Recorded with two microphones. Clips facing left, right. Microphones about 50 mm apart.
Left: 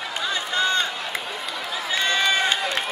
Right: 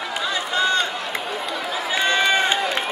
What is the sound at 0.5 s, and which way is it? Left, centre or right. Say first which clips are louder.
Run: right 2 dB; centre.